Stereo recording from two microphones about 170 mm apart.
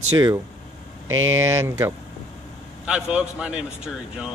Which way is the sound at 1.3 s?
20° right (ahead or behind).